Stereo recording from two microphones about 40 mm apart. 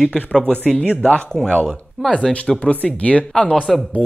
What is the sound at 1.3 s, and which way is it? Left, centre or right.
Speech, centre.